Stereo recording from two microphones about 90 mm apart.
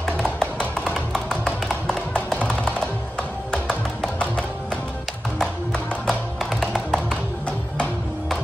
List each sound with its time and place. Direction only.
0.0 s music: 10° left (ahead or behind)